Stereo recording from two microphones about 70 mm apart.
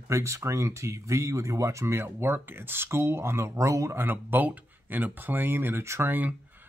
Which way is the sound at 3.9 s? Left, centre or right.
Right.